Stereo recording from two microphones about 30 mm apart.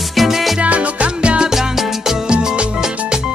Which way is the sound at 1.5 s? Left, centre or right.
Centre.